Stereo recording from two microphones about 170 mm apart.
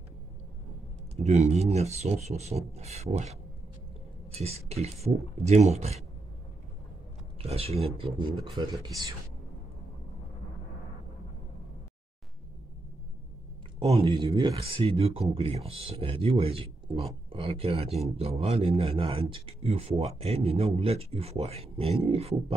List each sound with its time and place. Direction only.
1.1 s speech: 40° right (ahead or behind)
7.3 s speech: 35° right (ahead or behind)
13.7 s speech: 35° right (ahead or behind)